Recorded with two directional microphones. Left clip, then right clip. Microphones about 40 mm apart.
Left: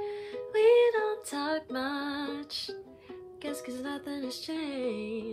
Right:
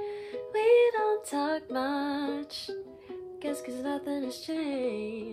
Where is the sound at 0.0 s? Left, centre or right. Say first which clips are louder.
Even; right.